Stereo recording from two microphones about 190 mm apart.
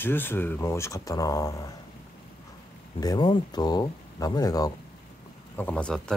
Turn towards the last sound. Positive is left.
turn(degrees=5)  # may be behind; listen again after turning